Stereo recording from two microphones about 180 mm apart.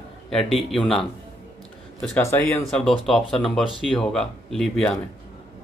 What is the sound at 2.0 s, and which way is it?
A man's voice, 10° left (ahead or behind).